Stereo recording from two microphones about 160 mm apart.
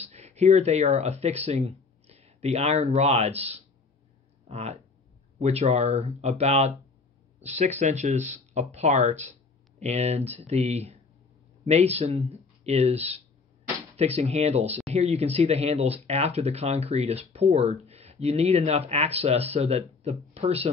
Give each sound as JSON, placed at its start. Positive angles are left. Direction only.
{"t": 0.0, "sound": "speech", "side_deg": -40}